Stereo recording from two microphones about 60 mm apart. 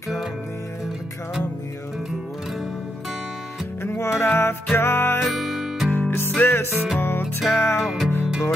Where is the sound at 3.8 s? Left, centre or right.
Left.